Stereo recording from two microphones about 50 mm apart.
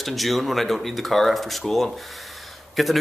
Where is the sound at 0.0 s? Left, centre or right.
Centre.